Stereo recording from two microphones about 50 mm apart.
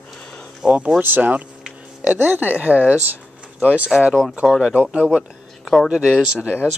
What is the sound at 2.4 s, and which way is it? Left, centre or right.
Speech, left.